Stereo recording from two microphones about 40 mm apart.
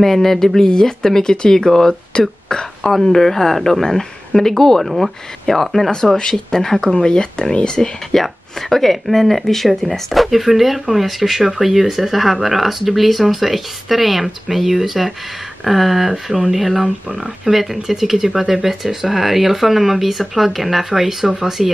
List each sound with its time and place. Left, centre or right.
0.0 s speech: centre
4.8 s speech: centre
6.1 s speech: centre
8.2 s speech: centre